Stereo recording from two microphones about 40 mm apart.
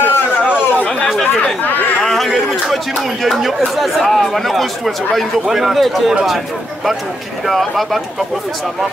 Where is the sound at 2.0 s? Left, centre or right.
Centre.